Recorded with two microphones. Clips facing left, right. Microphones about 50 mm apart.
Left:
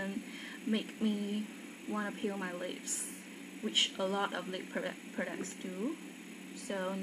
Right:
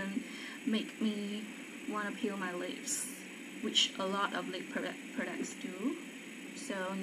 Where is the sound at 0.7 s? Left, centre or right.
Right.